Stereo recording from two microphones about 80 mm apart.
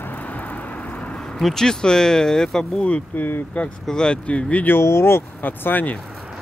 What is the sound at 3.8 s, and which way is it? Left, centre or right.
Speech, centre.